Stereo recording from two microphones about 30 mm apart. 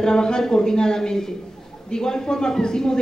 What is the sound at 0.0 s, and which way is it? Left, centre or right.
A woman's voice, left.